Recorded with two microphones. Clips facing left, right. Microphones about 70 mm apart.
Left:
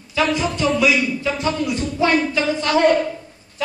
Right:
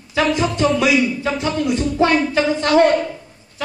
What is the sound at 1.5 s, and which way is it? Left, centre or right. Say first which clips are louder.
Music: right 3 dB; right.